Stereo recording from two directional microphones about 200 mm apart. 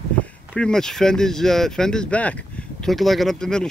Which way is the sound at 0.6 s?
5° left (ahead or behind).